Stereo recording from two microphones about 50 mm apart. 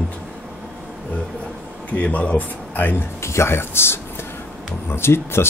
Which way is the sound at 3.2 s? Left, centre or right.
Left.